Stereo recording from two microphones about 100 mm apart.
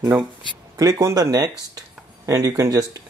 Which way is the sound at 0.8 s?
35° right (ahead or behind).